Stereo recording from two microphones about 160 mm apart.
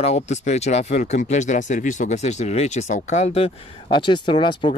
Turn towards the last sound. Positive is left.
turn(degrees=30)  # may be behind; listen again after turning